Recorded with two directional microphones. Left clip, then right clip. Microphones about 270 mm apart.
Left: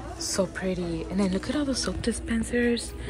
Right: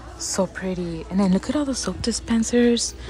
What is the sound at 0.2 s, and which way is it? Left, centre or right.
Speech, centre.